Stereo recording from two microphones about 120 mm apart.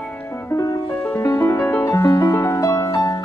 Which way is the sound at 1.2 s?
25° left (ahead or behind).